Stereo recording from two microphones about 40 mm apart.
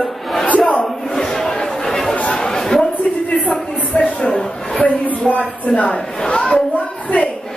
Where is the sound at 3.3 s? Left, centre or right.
Left.